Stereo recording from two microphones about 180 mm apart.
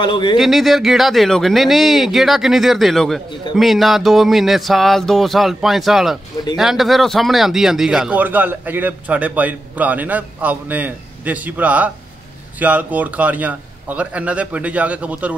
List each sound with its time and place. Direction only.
0.0 s speech: 25° left (ahead or behind)
0.4 s speech: centre (ahead or behind)